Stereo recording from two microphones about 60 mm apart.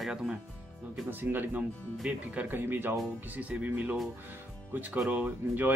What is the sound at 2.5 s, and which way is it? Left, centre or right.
A man's voice, right.